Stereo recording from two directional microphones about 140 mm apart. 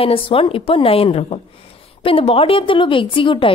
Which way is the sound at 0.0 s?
40° left (ahead or behind).